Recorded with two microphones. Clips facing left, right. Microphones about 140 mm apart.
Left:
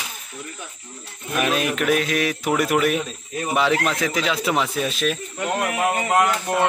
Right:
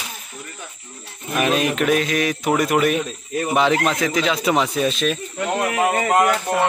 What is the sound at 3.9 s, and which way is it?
A man's voice, 5° left (ahead or behind).